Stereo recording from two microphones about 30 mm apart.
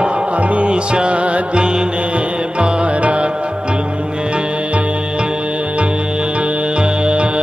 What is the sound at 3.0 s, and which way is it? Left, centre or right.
Music, right.